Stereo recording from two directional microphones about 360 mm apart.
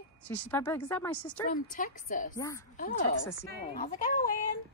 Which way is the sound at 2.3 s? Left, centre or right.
Centre.